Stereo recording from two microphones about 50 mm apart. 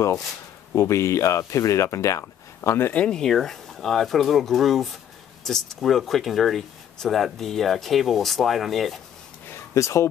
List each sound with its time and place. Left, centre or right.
0.7 s speech: left
3.1 s speech: centre
9.8 s speech: left